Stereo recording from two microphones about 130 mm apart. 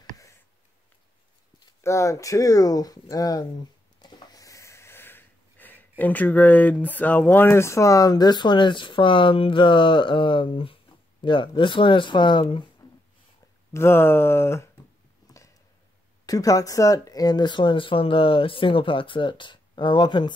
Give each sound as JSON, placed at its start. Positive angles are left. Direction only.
{"t": 1.8, "sound": "speech", "side_deg": 20}
{"t": 13.7, "sound": "speech", "side_deg": 20}
{"t": 16.3, "sound": "speech", "side_deg": 25}